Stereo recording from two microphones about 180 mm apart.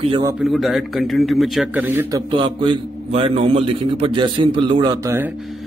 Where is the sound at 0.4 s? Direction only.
Centre (ahead or behind).